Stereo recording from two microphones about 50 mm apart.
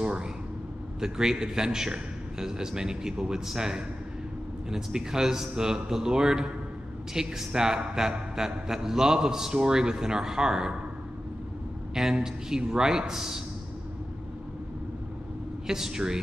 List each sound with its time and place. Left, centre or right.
0.0 s vehicle: centre
1.0 s a man's voice: centre
11.9 s a man's voice: centre
15.6 s a man's voice: centre